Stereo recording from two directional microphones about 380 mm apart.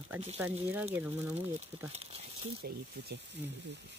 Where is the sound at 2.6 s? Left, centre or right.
Right.